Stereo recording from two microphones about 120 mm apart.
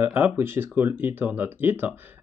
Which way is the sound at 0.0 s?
15° right (ahead or behind).